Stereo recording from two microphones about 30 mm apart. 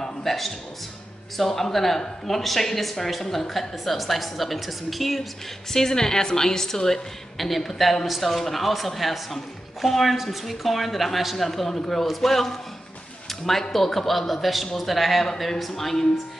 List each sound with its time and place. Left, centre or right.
0.0 s a sound: centre
1.4 s a man's voice: centre
5.7 s a woman's voice: centre
7.3 s a woman's voice: centre